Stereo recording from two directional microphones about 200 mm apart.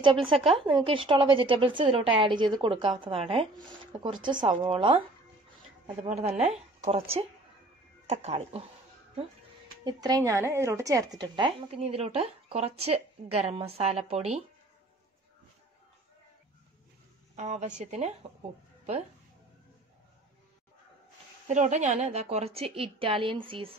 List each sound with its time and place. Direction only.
0.0 s a woman's voice: 25° right (ahead or behind)
6.0 s speech: 35° right (ahead or behind)
9.8 s a woman's voice: 20° right (ahead or behind)
17.4 s speech: 35° right (ahead or behind)
21.5 s a woman's voice: 35° right (ahead or behind)